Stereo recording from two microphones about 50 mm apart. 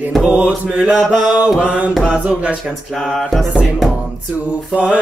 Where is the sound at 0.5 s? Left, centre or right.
Centre.